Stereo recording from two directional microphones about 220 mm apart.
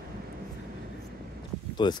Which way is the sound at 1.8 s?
20° left (ahead or behind).